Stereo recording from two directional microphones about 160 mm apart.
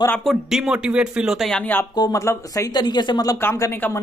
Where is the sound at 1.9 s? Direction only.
25° left (ahead or behind).